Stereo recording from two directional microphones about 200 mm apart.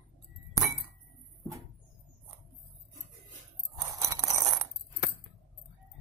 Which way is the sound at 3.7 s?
20° right (ahead or behind).